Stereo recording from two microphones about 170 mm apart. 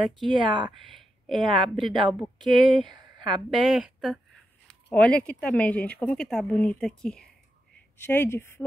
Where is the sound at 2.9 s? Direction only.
25° right (ahead or behind).